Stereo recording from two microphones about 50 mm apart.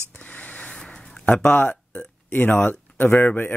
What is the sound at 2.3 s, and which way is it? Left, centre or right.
Speech, left.